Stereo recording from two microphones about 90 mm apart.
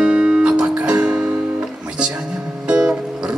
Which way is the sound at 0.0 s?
10° right (ahead or behind).